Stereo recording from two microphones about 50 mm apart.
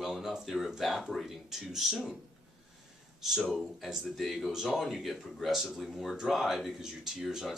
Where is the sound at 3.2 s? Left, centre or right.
Centre.